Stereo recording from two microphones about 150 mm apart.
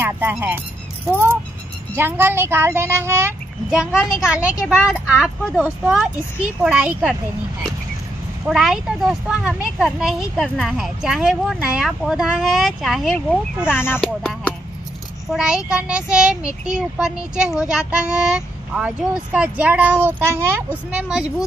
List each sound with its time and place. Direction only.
0.0 s a child's voice: 15° right (ahead or behind)
3.7 s a child's voice: 5° right (ahead or behind)
8.5 s a child's voice: 5° right (ahead or behind)
13.7 s speech: 15° left (ahead or behind)
15.2 s a child's voice: 5° right (ahead or behind)